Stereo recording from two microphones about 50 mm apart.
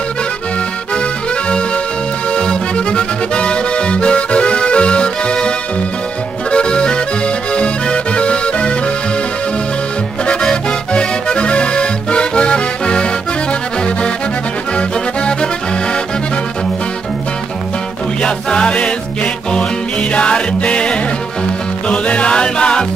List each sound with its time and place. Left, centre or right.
2.3 s music: centre
6.5 s accordion: centre
10.5 s accordion: centre
14.8 s music: centre
18.2 s music: centre